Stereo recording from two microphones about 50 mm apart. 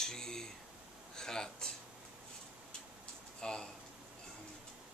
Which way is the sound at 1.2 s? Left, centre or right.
Centre.